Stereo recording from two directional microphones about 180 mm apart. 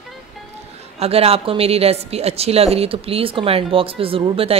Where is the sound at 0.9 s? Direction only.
35° right (ahead or behind).